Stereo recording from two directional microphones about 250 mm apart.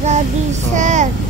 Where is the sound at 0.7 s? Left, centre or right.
Right.